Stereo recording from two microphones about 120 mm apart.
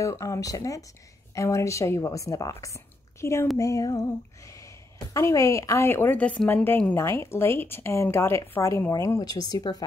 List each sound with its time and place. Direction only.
0.0 s a woman's voice: 25° left (ahead or behind)